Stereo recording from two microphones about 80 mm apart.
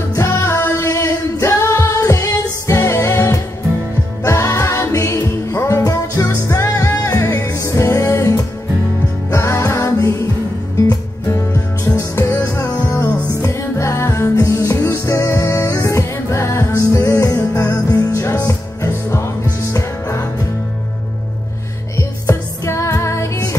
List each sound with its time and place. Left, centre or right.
0.2 s singing: left
4.2 s music: left
11.3 s music: left
13.4 s music: left
14.3 s music: left
21.9 s music: left